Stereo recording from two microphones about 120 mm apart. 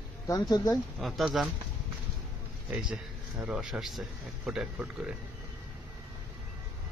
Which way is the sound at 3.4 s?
5° right (ahead or behind).